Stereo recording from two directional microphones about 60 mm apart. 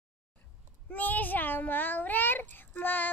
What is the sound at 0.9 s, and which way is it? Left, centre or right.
A child's voice, left.